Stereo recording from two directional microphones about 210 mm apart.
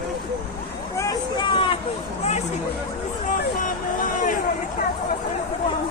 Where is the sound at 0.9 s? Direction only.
20° left (ahead or behind).